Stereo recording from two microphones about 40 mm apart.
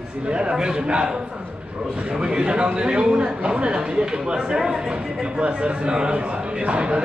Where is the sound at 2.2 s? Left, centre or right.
Right.